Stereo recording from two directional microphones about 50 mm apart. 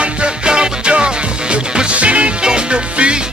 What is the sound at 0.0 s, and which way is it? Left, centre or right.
Music, centre.